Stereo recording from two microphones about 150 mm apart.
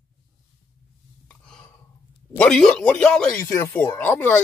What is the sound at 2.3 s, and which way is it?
Speech, 5° left (ahead or behind).